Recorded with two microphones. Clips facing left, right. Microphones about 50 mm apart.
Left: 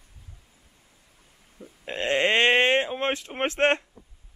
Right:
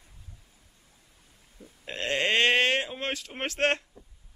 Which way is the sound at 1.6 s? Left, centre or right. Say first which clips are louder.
Left 4 dB; left.